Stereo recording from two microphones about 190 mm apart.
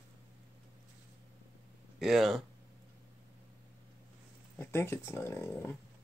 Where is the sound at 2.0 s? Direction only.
Centre (ahead or behind).